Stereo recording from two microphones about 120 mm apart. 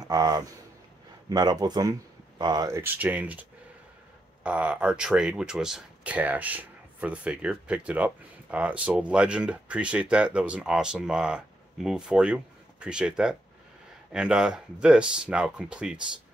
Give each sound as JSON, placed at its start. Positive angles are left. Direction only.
{"t": 0.0, "sound": "speech", "side_deg": -30}
{"t": 2.7, "sound": "speech", "side_deg": -20}